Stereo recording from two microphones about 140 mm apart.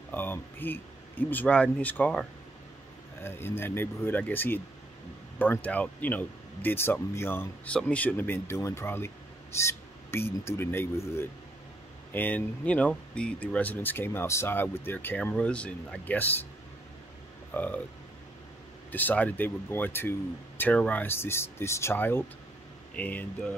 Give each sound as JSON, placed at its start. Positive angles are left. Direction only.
{"t": 0.1, "sound": "speech", "side_deg": 15}
{"t": 3.3, "sound": "speech", "side_deg": 15}
{"t": 17.5, "sound": "speech", "side_deg": 10}
{"t": 18.9, "sound": "speech", "side_deg": 10}